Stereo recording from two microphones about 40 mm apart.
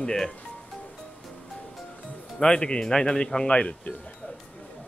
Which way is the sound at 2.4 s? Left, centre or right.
Left.